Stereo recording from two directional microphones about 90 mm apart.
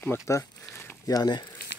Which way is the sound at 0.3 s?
35° left (ahead or behind).